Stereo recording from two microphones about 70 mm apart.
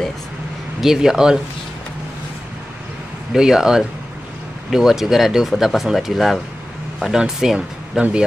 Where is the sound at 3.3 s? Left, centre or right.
Centre.